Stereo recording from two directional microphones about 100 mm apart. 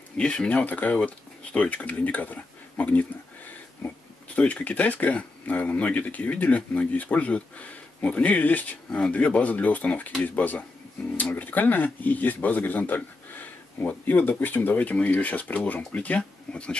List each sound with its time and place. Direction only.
0.2 s speech: 10° left (ahead or behind)